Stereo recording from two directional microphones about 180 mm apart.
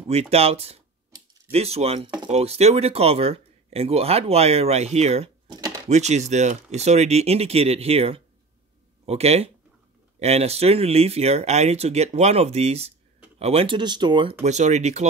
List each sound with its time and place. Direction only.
0.1 s speech: 35° right (ahead or behind)
14.4 s speech: 40° right (ahead or behind)